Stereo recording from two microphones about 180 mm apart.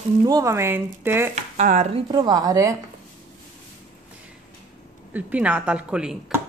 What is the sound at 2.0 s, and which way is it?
Speech, 25° right (ahead or behind).